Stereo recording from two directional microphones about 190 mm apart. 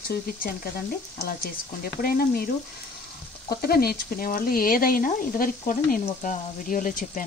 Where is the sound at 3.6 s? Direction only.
55° left (ahead or behind).